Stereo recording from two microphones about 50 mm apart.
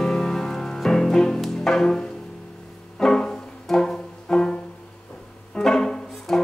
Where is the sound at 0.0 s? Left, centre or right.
Centre.